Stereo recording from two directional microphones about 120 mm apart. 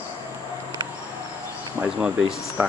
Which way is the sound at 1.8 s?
15° right (ahead or behind).